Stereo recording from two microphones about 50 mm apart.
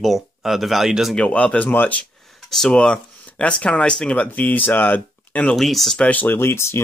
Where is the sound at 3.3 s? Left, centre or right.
Left.